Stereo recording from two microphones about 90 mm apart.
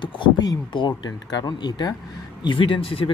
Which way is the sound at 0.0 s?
60° left (ahead or behind).